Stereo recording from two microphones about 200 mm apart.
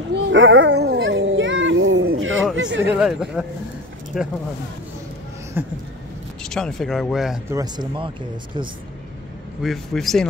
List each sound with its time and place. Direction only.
0.1 s a sound: 65° right (ahead or behind)
2.5 s a sound: 65° right (ahead or behind)
2.9 s speech: 5° right (ahead or behind)
5.5 s speech: 10° right (ahead or behind)
6.4 s speech: centre (ahead or behind)
7.4 s speech: 20° right (ahead or behind)
9.6 s speech: centre (ahead or behind)